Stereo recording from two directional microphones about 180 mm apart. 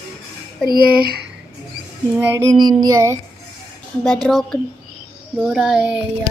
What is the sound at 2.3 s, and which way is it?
Child singing, 20° right (ahead or behind).